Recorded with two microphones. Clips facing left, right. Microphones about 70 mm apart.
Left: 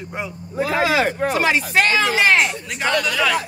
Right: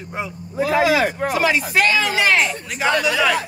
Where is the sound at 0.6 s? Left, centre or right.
Left.